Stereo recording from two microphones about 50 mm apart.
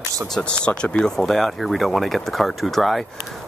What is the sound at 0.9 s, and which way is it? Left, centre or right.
Speech, centre.